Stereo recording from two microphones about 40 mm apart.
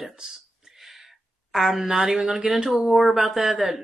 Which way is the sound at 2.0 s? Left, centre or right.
Right.